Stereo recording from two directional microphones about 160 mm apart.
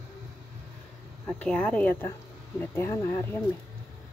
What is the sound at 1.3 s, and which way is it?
Speech, 5° left (ahead or behind).